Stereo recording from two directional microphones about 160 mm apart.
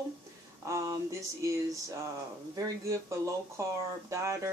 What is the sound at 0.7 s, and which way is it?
Speech, 20° right (ahead or behind).